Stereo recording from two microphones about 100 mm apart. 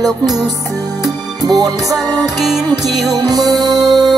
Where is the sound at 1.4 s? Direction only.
40° right (ahead or behind).